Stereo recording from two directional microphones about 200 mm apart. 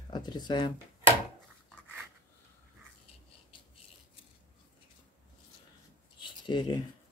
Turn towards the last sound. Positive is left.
turn(degrees=20)  # may be behind; listen again after turning